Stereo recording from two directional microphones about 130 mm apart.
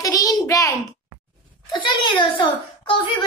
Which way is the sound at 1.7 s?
40° left (ahead or behind).